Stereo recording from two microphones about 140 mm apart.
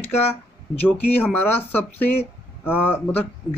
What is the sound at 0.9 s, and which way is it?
Speech, 15° left (ahead or behind).